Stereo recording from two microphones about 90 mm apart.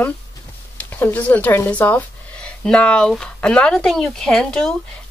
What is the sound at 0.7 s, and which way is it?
Speech, 20° left (ahead or behind).